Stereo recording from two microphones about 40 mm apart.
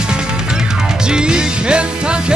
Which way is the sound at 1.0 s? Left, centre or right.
Right.